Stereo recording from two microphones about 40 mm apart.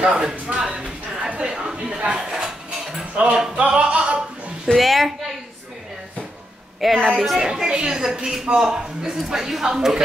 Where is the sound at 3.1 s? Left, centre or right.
Right.